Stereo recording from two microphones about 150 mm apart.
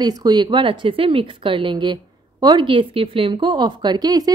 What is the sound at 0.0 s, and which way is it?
A woman's voice, 30° right (ahead or behind).